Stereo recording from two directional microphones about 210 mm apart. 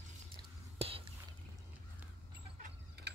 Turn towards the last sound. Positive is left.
turn(degrees=-50)  # may be behind; listen again after turning